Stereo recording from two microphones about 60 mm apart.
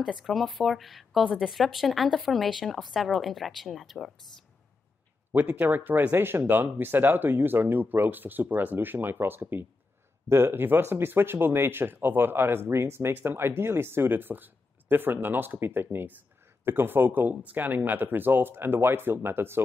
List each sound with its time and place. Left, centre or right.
0.0 s a woman's voice: centre
5.3 s speech: right